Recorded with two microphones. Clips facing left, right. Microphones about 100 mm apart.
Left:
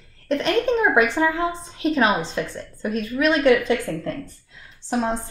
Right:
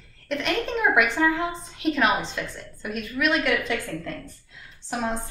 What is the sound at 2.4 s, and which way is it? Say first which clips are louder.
A woman's voice: left 6 dB; 30° left (ahead or behind).